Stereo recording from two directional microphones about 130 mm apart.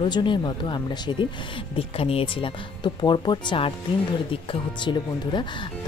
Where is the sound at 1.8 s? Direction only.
45° left (ahead or behind).